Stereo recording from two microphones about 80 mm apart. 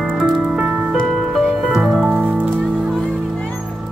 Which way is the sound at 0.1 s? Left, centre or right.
Centre.